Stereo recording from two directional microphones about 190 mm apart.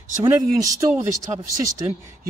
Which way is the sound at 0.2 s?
20° right (ahead or behind).